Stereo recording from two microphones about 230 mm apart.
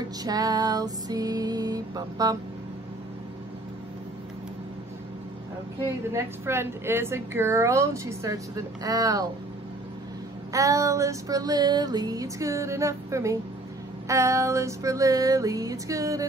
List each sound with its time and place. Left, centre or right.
0.2 s speech: centre
6.1 s speech: centre
10.5 s speech: centre